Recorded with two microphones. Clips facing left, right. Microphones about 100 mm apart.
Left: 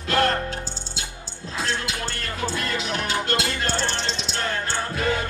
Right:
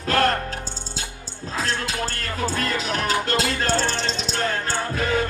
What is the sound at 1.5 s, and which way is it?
Speech, 40° right (ahead or behind).